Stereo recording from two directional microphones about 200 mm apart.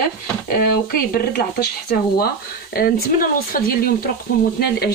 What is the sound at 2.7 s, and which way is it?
Speech, 50° left (ahead or behind).